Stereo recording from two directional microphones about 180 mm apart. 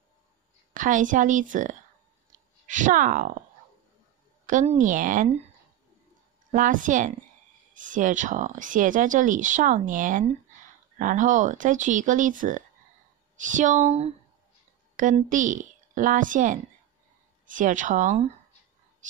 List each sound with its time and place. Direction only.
0.7 s speech: 45° right (ahead or behind)
4.5 s speech: 45° right (ahead or behind)
6.5 s a woman's voice: 45° right (ahead or behind)